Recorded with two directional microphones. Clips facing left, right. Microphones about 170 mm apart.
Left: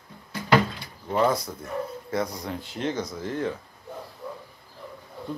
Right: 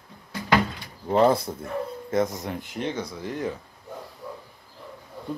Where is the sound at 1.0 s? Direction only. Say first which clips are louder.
Right 4 dB; 30° right (ahead or behind).